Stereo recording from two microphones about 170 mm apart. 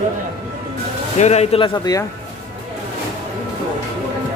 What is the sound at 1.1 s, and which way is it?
Speech, 40° left (ahead or behind).